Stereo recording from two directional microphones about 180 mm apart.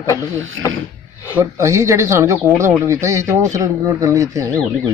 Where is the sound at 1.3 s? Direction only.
15° right (ahead or behind).